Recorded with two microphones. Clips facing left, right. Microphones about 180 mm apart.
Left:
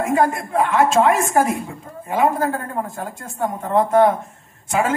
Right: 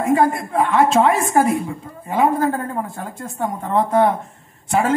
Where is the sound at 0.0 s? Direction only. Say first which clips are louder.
Right 2 dB; 45° left (ahead or behind).